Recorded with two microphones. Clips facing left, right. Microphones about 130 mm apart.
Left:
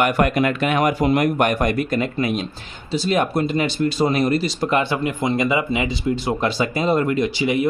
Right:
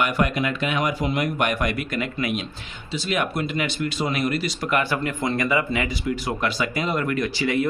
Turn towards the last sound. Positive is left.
turn(degrees=20)  # may be behind; listen again after turning